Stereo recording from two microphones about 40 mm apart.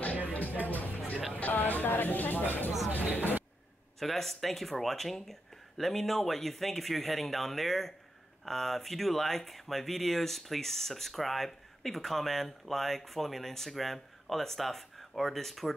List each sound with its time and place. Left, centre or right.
0.3 s music: left
1.3 s speech: left
4.0 s speech: centre